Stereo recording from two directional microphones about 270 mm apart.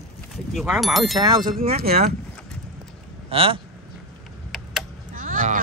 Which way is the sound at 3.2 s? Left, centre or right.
Right.